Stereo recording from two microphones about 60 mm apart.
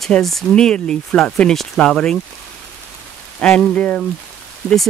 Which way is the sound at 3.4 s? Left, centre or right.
Centre.